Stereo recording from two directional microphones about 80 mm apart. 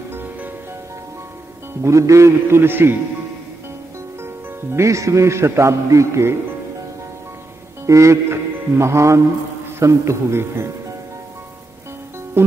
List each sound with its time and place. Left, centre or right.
1.8 s a man's voice: right
4.2 s a man's voice: right
7.8 s music: right
9.8 s a man's voice: right
12.4 s music: right